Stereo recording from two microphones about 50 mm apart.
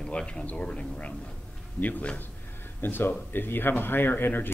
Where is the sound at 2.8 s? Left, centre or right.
Left.